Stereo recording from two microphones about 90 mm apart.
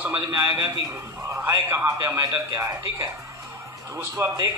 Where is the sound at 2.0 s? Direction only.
45° right (ahead or behind).